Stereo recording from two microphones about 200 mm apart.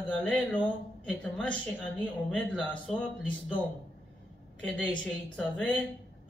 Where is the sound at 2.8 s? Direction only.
5° left (ahead or behind).